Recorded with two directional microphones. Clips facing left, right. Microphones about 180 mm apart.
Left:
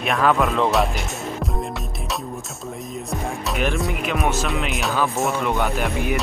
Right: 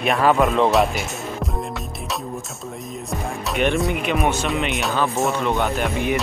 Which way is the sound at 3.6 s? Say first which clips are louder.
Right 4 dB; centre (ahead or behind).